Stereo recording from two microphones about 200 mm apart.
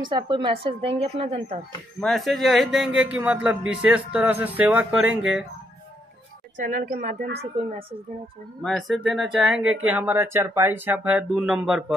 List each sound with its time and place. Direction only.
0.1 s a woman's voice: 25° right (ahead or behind)
2.0 s speech: centre (ahead or behind)
6.5 s speech: 40° right (ahead or behind)
8.6 s speech: centre (ahead or behind)